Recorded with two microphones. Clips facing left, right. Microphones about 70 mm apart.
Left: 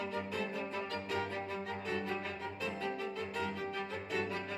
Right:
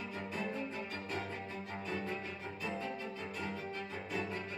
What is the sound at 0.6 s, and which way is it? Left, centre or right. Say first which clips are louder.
Music: left 2 dB; left.